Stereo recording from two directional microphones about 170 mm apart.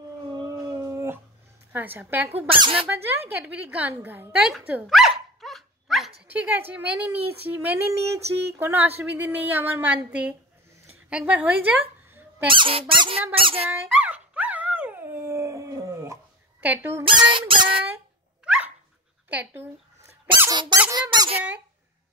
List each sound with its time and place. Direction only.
0.3 s a sound: 25° right (ahead or behind)
1.7 s speech: 10° right (ahead or behind)
2.5 s squeak: 30° right (ahead or behind)
2.9 s speech: 10° right (ahead or behind)
4.6 s dog: 5° right (ahead or behind)
6.7 s speech: 10° right (ahead or behind)
12.1 s squeak: 10° right (ahead or behind)
12.4 s squeak: 30° right (ahead or behind)
13.7 s dog: 10° right (ahead or behind)
16.6 s speech: 10° right (ahead or behind)
17.0 s squeak: 30° right (ahead or behind)
19.2 s speech: 10° right (ahead or behind)
20.3 s squeak: 25° right (ahead or behind)